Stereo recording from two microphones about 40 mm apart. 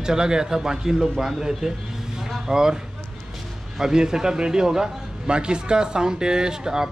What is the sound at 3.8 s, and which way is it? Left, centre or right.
Speech, centre.